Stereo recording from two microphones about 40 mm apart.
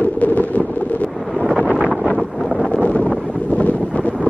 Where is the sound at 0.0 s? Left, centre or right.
Left.